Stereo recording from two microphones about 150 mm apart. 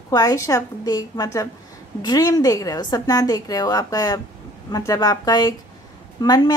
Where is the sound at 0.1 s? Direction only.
25° left (ahead or behind).